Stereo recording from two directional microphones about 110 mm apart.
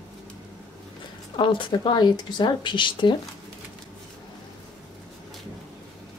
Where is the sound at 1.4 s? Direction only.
50° left (ahead or behind).